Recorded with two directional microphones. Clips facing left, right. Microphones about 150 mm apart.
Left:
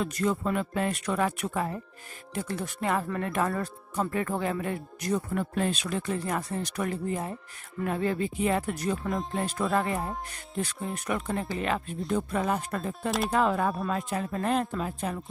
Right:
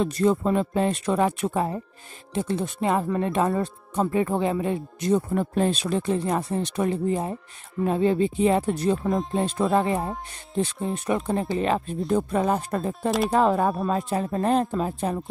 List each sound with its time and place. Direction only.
0.0 s a woman's voice: 30° right (ahead or behind)